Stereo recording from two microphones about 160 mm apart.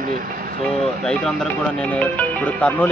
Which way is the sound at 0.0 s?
60° right (ahead or behind).